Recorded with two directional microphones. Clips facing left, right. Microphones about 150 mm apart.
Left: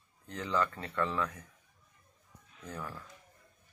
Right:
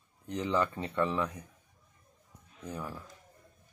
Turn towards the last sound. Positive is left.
turn(degrees=-15)  # may be behind; listen again after turning